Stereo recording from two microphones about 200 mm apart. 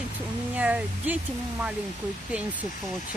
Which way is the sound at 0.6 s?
5° right (ahead or behind).